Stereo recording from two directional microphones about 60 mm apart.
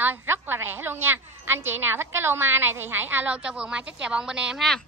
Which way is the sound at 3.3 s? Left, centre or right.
Centre.